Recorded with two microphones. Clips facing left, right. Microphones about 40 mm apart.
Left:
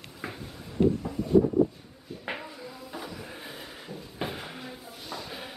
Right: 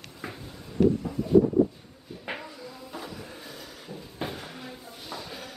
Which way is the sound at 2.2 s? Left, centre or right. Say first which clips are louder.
Even; centre.